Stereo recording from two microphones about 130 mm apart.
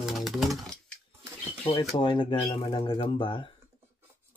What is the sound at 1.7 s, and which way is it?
Speech, 35° left (ahead or behind).